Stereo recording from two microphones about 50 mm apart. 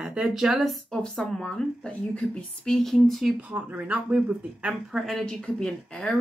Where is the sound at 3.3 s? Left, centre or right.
Right.